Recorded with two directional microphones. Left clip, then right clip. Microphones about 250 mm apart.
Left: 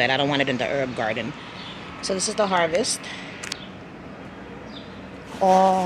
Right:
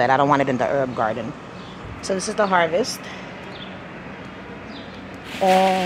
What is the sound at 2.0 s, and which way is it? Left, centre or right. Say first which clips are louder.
Speech: right 2 dB; centre.